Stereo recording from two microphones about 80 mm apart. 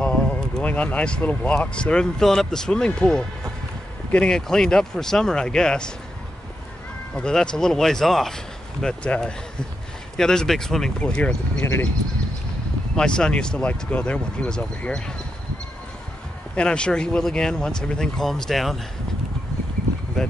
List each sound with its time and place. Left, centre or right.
0.0 s speech: centre
7.2 s speech: centre
11.6 s speech: left
12.9 s speech: centre
16.5 s speech: centre
20.2 s speech: centre